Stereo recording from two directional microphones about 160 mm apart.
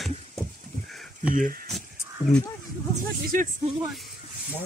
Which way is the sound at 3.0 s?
60° right (ahead or behind).